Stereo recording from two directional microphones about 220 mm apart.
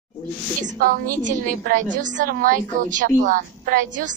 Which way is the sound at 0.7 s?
40° right (ahead or behind).